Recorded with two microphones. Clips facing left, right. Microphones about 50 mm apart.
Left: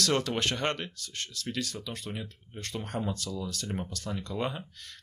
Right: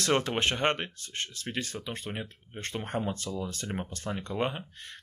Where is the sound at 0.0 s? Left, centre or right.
Right.